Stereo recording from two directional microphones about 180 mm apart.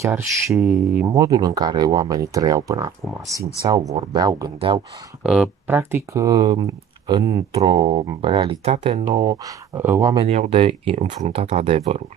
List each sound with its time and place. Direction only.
0.0 s speech: 15° right (ahead or behind)
1.0 s speech: 20° right (ahead or behind)
5.2 s speech: 5° right (ahead or behind); by 7.4 s 25° right (ahead or behind)
7.5 s speech: 35° right (ahead or behind); by 10.2 s 15° right (ahead or behind)
10.2 s speech: 35° right (ahead or behind)